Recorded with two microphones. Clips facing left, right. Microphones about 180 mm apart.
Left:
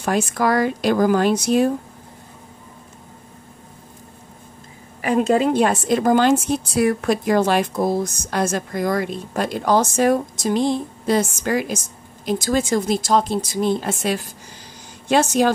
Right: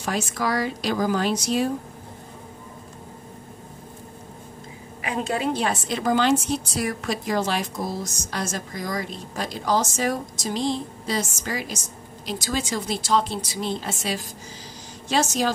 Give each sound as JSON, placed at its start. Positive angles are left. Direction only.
{"t": 0.0, "sound": "a woman's voice", "side_deg": 55}
{"t": 5.5, "sound": "a woman's voice", "side_deg": 50}